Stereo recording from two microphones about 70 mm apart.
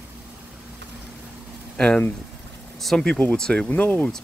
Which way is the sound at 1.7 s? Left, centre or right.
Centre.